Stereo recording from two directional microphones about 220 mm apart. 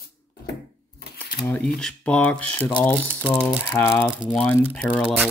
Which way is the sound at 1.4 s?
5° left (ahead or behind).